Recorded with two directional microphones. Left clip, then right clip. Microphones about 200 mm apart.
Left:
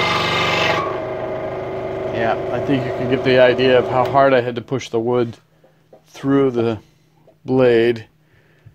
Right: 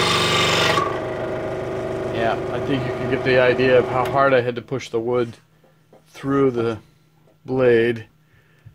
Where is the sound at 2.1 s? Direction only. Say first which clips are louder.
Left 3 dB; 25° left (ahead or behind).